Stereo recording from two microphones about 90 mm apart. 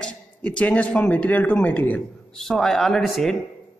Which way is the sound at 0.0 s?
15° left (ahead or behind).